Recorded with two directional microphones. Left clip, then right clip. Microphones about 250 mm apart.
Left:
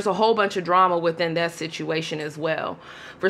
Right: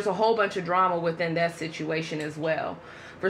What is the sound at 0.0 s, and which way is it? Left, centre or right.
A woman's voice, left.